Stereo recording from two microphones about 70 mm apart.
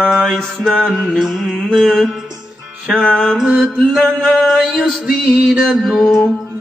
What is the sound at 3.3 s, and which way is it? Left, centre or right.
Music, centre.